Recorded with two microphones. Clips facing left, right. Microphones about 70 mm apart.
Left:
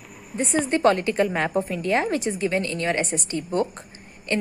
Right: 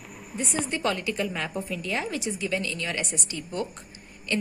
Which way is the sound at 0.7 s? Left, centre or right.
Left.